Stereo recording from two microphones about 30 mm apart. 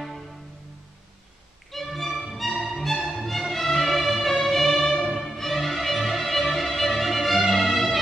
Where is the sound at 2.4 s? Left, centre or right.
Centre.